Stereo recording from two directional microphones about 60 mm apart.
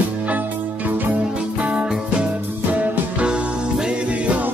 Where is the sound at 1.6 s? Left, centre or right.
Centre.